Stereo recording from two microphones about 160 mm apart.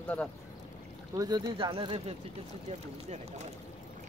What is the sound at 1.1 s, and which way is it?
Speech, 25° right (ahead or behind).